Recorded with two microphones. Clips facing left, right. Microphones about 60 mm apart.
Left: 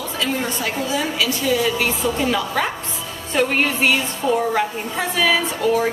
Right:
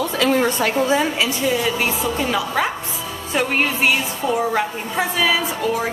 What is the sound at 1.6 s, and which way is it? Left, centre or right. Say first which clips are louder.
A woman's voice: left 1 dB; centre.